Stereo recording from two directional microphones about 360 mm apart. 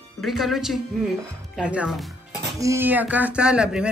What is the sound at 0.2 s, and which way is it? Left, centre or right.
Speech, centre.